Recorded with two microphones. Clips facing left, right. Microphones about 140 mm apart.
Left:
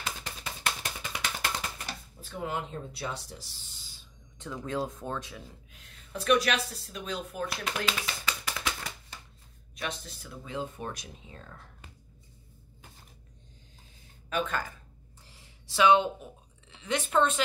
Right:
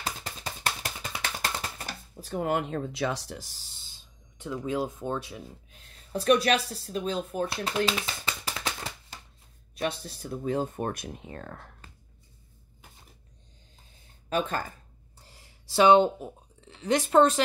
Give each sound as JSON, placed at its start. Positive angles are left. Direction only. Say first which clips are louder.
{"t": 0.0, "sound": "a sound", "louder": "right 2 dB", "side_deg": -35}
{"t": 1.2, "sound": "typewriter", "louder": "right 1 dB", "side_deg": -35}
{"t": 2.3, "sound": "speech", "louder": "right 7 dB", "side_deg": -55}
{"t": 3.3, "sound": "speech", "louder": "right 4 dB", "side_deg": -45}
{"t": 4.4, "sound": "speech", "louder": "right 3 dB", "side_deg": -10}
{"t": 5.0, "sound": "speech", "louder": "right 4 dB", "side_deg": -15}
{"t": 5.7, "sound": "a sound", "louder": "right 10 dB", "side_deg": -35}
{"t": 6.9, "sound": "speech", "louder": "right 9 dB", "side_deg": -30}
{"t": 14.3, "sound": "speech", "louder": "right 3 dB", "side_deg": -35}
{"t": 15.2, "sound": "a sound", "louder": "right 2 dB", "side_deg": -35}
{"t": 16.2, "sound": "speech", "louder": "right 6 dB", "side_deg": -40}